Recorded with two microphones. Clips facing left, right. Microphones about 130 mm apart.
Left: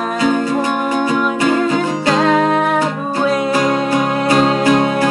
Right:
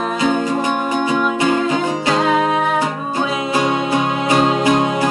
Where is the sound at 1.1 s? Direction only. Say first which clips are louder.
Even; 20° right (ahead or behind).